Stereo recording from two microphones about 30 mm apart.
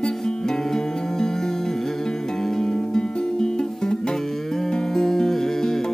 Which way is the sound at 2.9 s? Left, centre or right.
Left.